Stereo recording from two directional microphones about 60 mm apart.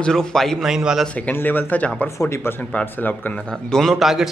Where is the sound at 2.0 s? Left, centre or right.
Left.